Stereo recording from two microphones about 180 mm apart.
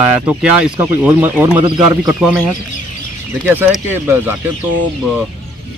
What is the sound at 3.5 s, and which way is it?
Speech, 10° right (ahead or behind).